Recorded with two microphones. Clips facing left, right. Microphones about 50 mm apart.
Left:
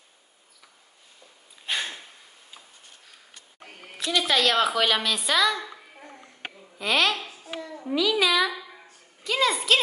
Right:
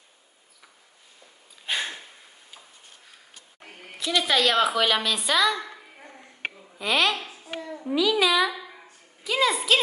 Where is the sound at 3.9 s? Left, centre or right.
Centre.